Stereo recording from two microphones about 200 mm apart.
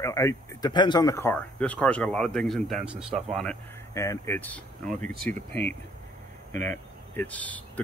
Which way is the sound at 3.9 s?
15° left (ahead or behind).